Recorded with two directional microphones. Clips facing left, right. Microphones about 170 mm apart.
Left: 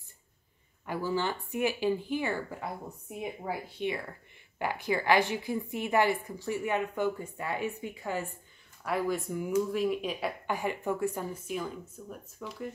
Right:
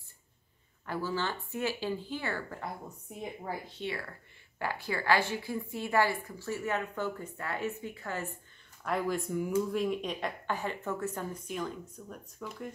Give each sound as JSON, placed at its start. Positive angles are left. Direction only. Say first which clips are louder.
{"t": 0.8, "sound": "a woman's voice", "louder": "left 3 dB", "side_deg": 15}
{"t": 8.8, "sound": "a woman's voice", "louder": "left 1 dB", "side_deg": 0}